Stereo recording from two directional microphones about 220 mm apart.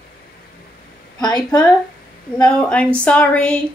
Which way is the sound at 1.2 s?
15° left (ahead or behind).